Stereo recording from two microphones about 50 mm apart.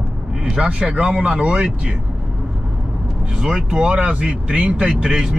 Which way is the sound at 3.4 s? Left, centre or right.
Centre.